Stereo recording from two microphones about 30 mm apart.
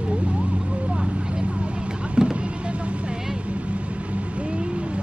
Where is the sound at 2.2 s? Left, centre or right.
Right.